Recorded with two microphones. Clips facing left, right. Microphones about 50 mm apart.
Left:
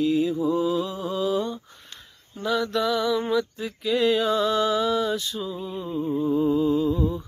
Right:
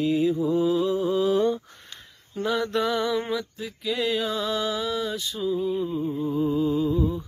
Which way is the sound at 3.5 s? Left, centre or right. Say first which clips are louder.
Left 4 dB; centre.